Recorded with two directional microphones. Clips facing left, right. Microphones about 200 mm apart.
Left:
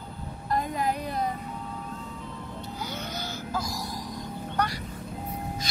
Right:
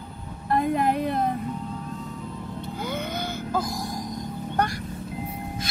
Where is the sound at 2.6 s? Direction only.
55° right (ahead or behind).